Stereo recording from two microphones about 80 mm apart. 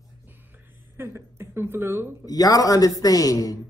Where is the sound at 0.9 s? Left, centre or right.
Right.